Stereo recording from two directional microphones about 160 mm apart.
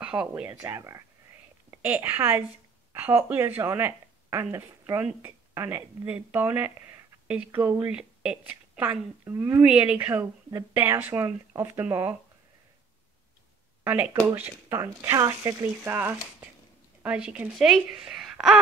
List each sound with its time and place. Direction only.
0.0 s a sound: 5° right (ahead or behind)
0.3 s a woman's voice: 15° right (ahead or behind)
13.8 s a woman's voice: 10° right (ahead or behind)